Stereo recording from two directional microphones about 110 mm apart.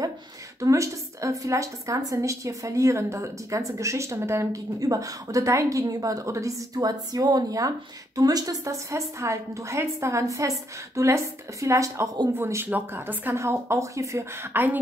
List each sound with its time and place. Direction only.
0.6 s a woman's voice: 30° right (ahead or behind)